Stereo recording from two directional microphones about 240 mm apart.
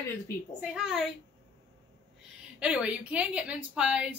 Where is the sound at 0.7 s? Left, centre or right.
Centre.